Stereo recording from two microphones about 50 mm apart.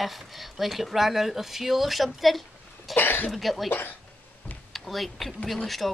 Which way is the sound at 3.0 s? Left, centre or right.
Left.